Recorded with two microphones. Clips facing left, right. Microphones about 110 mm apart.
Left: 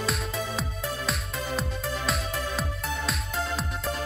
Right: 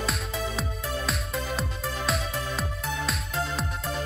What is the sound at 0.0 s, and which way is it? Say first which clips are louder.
Music: even; centre (ahead or behind).